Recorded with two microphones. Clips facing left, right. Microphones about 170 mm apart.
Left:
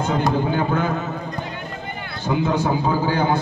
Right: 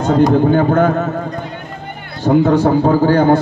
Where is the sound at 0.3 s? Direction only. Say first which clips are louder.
Right 9 dB; 55° right (ahead or behind).